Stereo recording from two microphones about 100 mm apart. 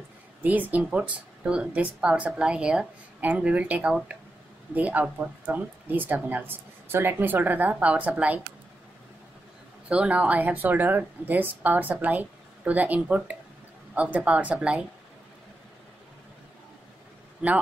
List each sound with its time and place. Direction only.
0.4 s speech: 15° right (ahead or behind)
9.8 s speech: 10° right (ahead or behind)